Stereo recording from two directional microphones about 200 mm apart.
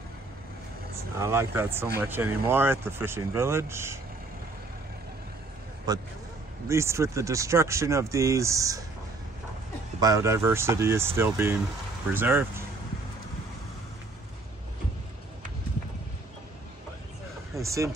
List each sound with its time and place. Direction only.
1.1 s speech: 15° right (ahead or behind)
5.9 s speech: 20° right (ahead or behind)
9.9 s speech: 15° right (ahead or behind)
17.6 s speech: 15° right (ahead or behind)